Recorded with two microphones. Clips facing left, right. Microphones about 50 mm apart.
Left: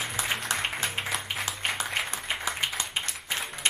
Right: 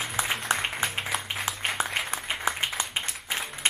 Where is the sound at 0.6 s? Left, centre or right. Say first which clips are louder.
Right 1 dB; centre.